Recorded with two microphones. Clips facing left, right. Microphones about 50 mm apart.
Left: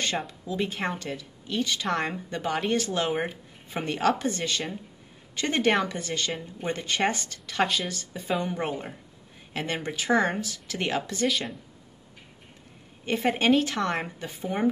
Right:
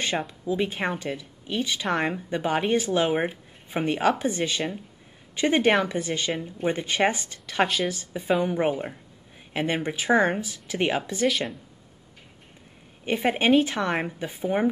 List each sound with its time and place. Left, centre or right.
0.5 s speech: centre
7.6 s speech: centre
7.9 s speech: centre
11.2 s speech: centre
13.0 s speech: centre